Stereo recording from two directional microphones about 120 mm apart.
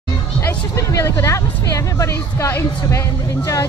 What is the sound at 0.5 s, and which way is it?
Speech, 25° left (ahead or behind).